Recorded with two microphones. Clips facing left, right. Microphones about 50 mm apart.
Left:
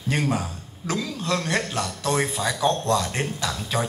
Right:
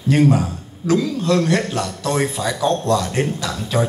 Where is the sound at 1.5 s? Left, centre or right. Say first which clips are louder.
Right 5 dB; right.